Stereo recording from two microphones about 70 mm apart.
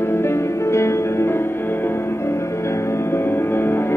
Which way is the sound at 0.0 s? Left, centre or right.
Left.